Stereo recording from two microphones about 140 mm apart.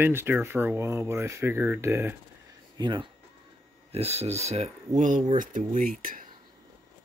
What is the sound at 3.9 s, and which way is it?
Speech, 45° right (ahead or behind).